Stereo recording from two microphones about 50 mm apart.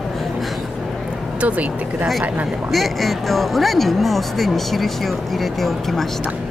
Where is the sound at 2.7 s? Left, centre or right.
Centre.